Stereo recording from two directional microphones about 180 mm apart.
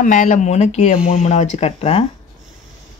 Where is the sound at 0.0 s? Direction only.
45° left (ahead or behind).